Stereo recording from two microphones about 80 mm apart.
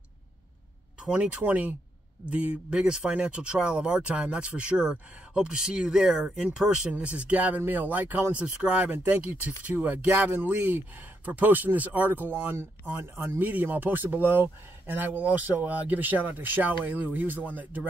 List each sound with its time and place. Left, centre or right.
1.0 s speech: centre